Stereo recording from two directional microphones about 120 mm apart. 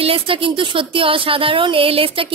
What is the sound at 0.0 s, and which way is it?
Speech, 50° right (ahead or behind).